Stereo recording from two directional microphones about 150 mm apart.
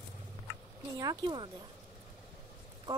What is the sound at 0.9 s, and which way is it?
Speech, 30° right (ahead or behind).